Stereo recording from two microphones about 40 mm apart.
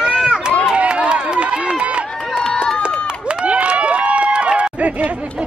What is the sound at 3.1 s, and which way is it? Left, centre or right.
Crowd, right.